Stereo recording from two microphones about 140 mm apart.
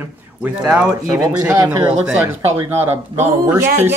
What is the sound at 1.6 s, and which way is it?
Speech, 30° right (ahead or behind).